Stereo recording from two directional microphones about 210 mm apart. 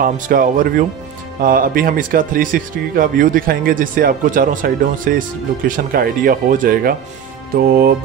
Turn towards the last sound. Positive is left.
turn(degrees=-45)  # may be behind; listen again after turning